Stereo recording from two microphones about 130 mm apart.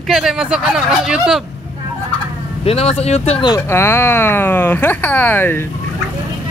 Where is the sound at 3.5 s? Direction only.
20° left (ahead or behind).